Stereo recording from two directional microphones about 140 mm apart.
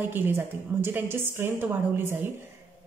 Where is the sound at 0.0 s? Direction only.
15° right (ahead or behind).